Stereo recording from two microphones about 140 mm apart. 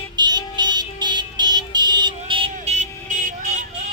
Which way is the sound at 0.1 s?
30° right (ahead or behind).